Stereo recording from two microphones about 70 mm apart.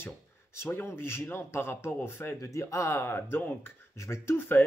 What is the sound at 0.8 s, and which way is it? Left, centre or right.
Speech, left.